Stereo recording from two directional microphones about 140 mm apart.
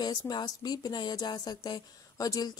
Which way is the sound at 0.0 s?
30° left (ahead or behind).